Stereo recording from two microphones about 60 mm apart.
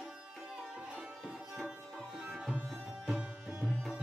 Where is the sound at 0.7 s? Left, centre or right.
Centre.